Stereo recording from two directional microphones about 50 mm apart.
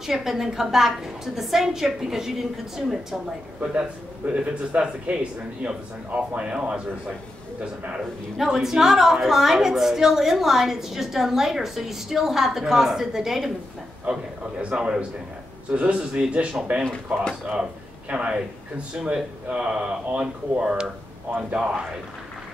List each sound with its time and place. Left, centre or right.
0.0 s a woman's voice: centre
4.3 s speech: right
8.4 s a woman's voice: centre
14.1 s speech: right
14.6 s speech: centre
18.1 s speech: right